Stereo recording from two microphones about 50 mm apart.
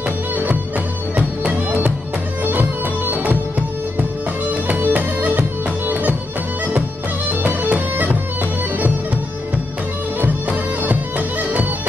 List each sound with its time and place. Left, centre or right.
1.1 s music: right
3.1 s music: right
4.6 s music: right
7.2 s music: right
10.2 s bagpipes: right